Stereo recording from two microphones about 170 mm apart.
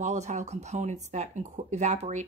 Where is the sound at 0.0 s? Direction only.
45° right (ahead or behind).